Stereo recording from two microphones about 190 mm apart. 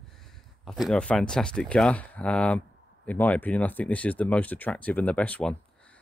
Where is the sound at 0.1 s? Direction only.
Centre (ahead or behind).